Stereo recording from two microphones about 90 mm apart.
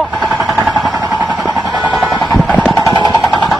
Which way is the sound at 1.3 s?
5° right (ahead or behind).